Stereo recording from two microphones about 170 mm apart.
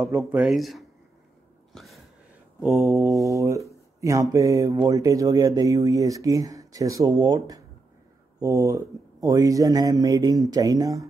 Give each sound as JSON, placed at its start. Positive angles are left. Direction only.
{"t": 0.0, "sound": "speech", "side_deg": -10}
{"t": 1.7, "sound": "a sound", "side_deg": 0}
{"t": 2.6, "sound": "speech", "side_deg": -15}